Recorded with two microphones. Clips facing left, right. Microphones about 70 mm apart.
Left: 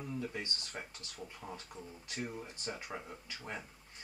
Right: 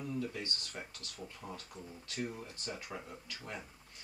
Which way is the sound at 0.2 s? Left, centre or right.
Left.